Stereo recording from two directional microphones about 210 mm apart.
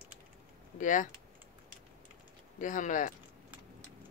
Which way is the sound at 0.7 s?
40° left (ahead or behind).